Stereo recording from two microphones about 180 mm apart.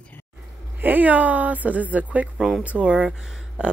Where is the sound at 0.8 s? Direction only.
10° right (ahead or behind).